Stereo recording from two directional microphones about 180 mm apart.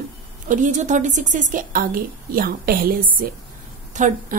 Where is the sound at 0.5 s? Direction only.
45° right (ahead or behind).